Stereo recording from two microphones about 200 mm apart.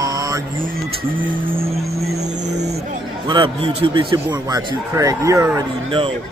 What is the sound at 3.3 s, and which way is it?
A man's voice, 25° right (ahead or behind).